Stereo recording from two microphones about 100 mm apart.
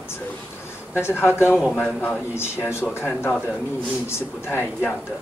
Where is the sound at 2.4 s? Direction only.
25° left (ahead or behind).